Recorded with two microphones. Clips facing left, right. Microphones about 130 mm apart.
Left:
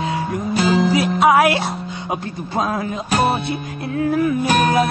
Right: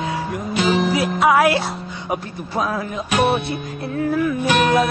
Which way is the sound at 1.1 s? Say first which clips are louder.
Left 1 dB; 20° left (ahead or behind).